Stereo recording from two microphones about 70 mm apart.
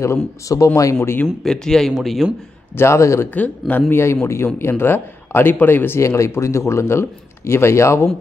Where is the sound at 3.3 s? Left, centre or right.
Left.